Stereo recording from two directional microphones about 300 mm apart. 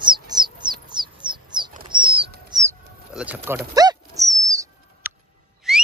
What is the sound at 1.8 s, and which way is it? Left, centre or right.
Bird flight, centre.